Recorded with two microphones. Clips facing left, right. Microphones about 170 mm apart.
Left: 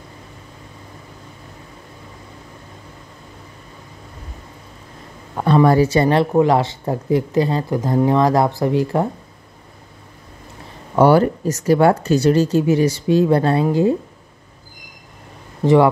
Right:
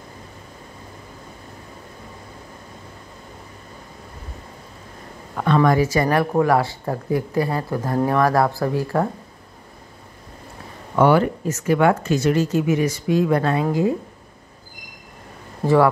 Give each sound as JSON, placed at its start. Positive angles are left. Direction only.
{"t": 5.4, "sound": "speech", "side_deg": 30}
{"t": 11.0, "sound": "speech", "side_deg": 35}
{"t": 15.6, "sound": "speech", "side_deg": 20}